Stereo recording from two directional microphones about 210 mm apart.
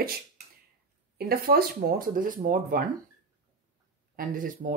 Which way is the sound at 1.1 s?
45° right (ahead or behind).